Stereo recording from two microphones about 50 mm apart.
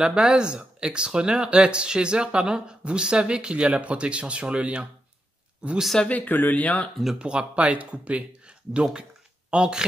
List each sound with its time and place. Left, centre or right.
0.0 s speech: centre
6.0 s speech: left
7.2 s speech: right